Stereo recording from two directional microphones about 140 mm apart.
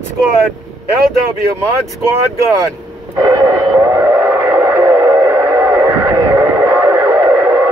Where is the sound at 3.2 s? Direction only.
20° right (ahead or behind).